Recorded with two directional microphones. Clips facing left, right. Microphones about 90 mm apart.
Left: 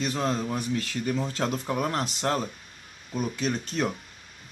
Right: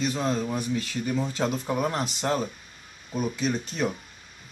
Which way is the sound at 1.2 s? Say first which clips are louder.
Right 1 dB; 10° right (ahead or behind).